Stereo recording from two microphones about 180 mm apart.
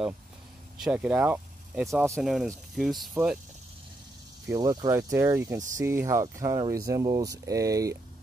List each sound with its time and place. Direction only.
0.7 s speech: 5° right (ahead or behind)
4.5 s speech: 20° right (ahead or behind)